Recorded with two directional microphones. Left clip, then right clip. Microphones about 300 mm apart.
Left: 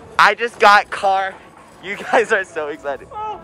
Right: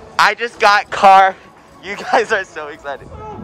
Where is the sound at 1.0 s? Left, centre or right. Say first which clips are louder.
Right 10 dB; right.